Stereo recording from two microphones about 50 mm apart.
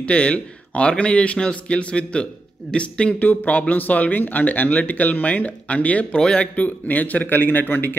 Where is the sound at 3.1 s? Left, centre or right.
Left.